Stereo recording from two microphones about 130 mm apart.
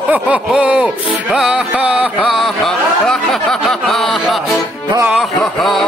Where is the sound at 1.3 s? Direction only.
5° right (ahead or behind).